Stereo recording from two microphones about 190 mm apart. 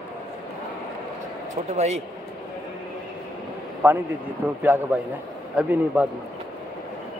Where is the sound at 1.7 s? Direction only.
35° right (ahead or behind).